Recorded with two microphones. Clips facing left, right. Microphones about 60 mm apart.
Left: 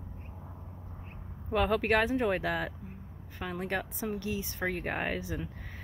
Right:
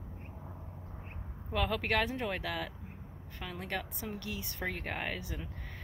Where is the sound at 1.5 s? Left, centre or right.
Centre.